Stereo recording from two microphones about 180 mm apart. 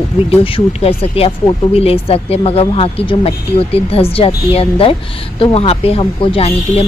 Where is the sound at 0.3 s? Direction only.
30° left (ahead or behind).